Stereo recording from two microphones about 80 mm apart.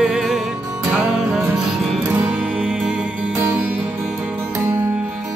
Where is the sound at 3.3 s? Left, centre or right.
Right.